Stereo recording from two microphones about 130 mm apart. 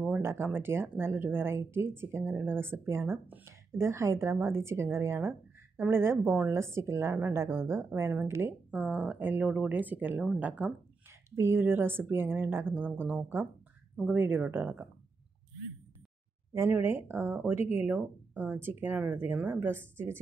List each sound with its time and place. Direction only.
0.0 s a woman's voice: 15° right (ahead or behind)
16.5 s a woman's voice: 15° right (ahead or behind)